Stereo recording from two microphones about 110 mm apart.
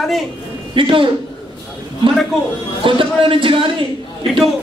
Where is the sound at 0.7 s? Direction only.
50° right (ahead or behind).